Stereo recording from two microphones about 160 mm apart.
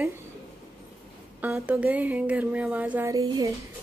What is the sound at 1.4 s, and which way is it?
Speech, 5° right (ahead or behind).